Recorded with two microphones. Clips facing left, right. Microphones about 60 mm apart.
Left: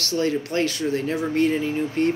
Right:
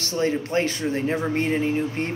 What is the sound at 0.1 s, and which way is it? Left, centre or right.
Speech, right.